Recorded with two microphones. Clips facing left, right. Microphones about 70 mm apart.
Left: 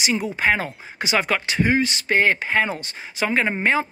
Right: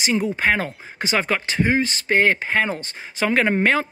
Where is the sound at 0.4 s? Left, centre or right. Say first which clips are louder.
Even; right.